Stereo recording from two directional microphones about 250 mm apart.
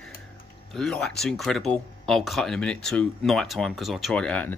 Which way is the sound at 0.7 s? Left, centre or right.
Centre.